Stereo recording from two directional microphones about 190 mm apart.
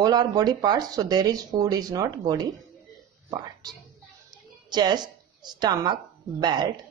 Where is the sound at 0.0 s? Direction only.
20° right (ahead or behind).